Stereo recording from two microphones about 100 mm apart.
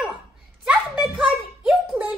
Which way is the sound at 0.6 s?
10° right (ahead or behind).